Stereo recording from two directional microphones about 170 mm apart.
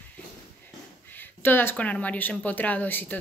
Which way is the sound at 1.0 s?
10° left (ahead or behind).